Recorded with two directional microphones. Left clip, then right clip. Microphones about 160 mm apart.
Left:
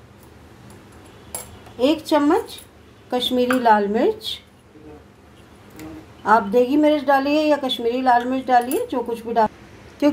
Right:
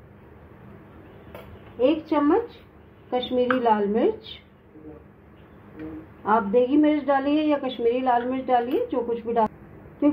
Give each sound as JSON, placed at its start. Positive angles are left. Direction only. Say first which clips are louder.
{"t": 1.8, "sound": "a woman's voice", "louder": "left 3 dB", "side_deg": 25}
{"t": 6.2, "sound": "a woman's voice", "louder": "left 4 dB", "side_deg": 20}